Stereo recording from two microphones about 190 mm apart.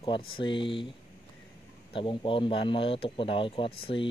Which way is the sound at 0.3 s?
25° left (ahead or behind).